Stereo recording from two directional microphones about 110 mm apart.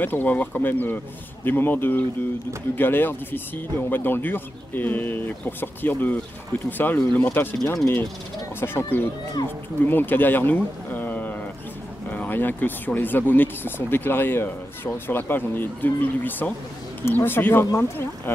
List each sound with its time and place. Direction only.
0.0 s speech: 15° left (ahead or behind)
7.6 s speech: 25° left (ahead or behind)